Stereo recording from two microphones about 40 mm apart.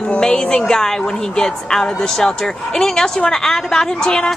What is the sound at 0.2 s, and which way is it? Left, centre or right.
A woman's voice, centre.